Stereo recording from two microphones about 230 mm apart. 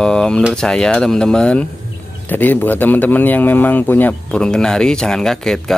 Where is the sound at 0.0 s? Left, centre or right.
Centre.